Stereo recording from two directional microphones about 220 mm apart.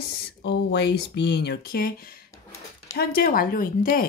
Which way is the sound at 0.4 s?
50° left (ahead or behind).